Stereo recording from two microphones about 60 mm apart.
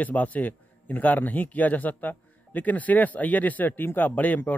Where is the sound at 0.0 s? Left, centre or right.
Left.